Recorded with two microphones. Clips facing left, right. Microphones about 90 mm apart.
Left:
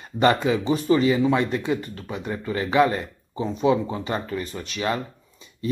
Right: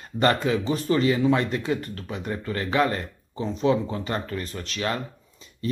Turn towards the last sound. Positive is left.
turn(degrees=5)  # may be behind; listen again after turning